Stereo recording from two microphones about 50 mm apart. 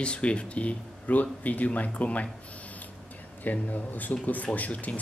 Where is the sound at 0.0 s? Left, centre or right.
Left.